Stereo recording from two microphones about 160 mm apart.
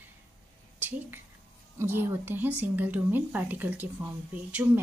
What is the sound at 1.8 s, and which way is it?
A woman's voice, 15° right (ahead or behind).